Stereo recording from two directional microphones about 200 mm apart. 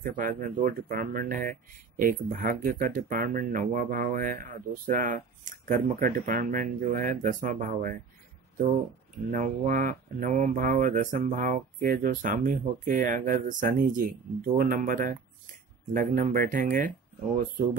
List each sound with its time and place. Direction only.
0.0 s speech: 40° right (ahead or behind)
9.3 s speech: 40° right (ahead or behind)